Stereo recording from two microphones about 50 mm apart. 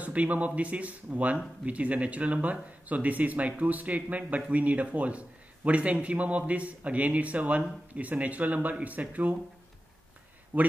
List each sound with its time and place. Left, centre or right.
0.0 s a man's voice: right
10.5 s a man's voice: right